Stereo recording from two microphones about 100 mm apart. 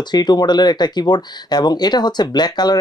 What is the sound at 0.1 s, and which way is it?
Speech, 45° left (ahead or behind).